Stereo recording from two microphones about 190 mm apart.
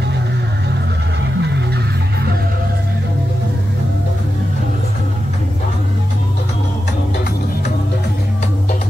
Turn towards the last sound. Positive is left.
turn(degrees=60)  # may be behind; listen again after turning